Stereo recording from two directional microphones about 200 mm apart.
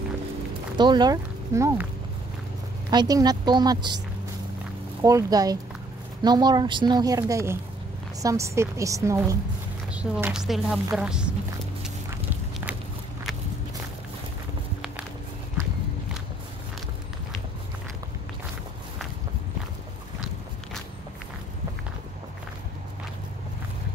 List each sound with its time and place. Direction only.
0.7 s speech: 20° right (ahead or behind)
2.9 s a woman's voice: 20° right (ahead or behind)
5.0 s a woman's voice: 20° right (ahead or behind)